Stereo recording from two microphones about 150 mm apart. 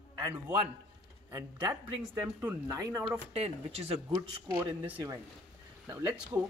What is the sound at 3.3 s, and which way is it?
Speech, 45° right (ahead or behind).